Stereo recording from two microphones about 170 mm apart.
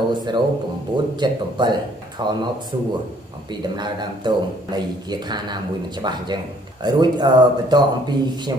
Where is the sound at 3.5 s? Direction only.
25° right (ahead or behind).